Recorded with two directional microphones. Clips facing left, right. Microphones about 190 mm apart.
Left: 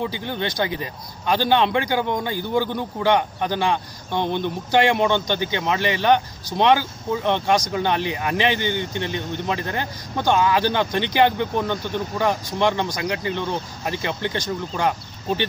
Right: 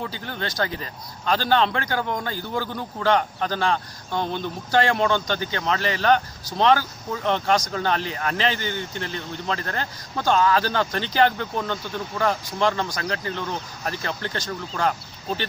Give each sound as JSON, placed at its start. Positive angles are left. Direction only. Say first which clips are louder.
{"t": 0.0, "sound": "speech", "louder": "left 5 dB", "side_deg": 20}